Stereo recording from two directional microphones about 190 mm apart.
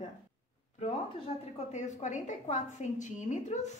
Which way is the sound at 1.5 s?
40° left (ahead or behind).